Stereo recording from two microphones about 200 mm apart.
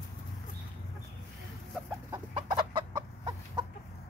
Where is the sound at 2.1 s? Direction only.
25° right (ahead or behind).